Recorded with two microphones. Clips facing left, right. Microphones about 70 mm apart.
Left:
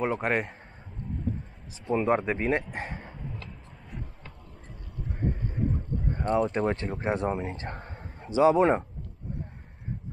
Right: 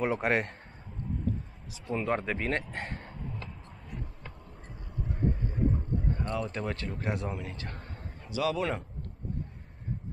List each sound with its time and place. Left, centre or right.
0.0 s a man's voice: centre
1.9 s speech: centre
2.7 s a sound: centre
6.1 s a man's voice: left